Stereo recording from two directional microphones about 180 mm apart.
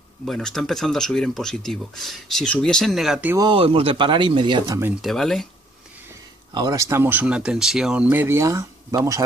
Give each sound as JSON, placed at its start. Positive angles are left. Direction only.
{"t": 0.2, "sound": "speech", "side_deg": 0}
{"t": 3.3, "sound": "speech", "side_deg": -25}
{"t": 5.0, "sound": "speech", "side_deg": 0}
{"t": 6.5, "sound": "speech", "side_deg": -20}